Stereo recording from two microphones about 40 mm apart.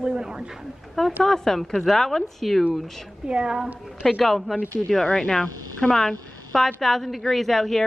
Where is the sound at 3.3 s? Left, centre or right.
Right.